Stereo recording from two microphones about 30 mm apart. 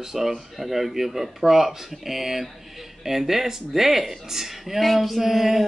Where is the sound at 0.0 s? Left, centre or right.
Centre.